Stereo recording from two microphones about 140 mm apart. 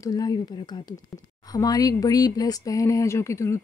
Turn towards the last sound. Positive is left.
turn(degrees=20)  # may be behind; listen again after turning